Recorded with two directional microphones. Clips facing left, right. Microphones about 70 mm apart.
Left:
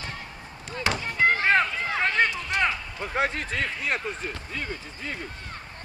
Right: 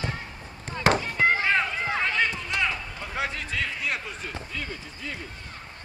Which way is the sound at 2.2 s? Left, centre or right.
Left.